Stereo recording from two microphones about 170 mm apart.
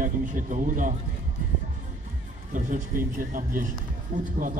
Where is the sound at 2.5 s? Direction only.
50° right (ahead or behind).